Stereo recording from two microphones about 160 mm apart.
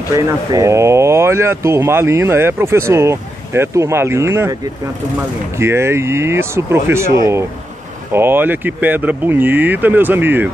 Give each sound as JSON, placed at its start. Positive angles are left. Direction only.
{"t": 0.1, "sound": "speech", "side_deg": -20}
{"t": 5.6, "sound": "speech", "side_deg": -15}
{"t": 8.1, "sound": "speech", "side_deg": -15}